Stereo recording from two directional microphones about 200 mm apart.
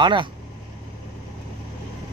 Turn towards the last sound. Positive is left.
turn(degrees=-25)  # may be behind; listen again after turning